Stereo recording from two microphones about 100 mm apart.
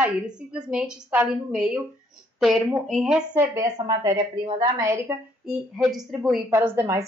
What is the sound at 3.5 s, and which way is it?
Speech, 40° right (ahead or behind).